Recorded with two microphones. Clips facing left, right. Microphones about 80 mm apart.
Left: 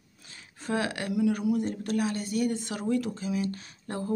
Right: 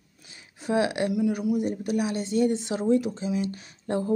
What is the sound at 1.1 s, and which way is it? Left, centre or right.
Speech, centre.